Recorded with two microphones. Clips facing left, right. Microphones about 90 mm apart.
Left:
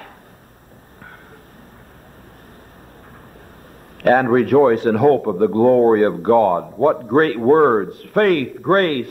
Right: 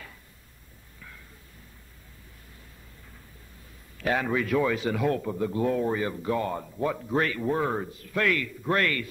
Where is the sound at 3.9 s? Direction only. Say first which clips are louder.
Left 13 dB; 55° left (ahead or behind).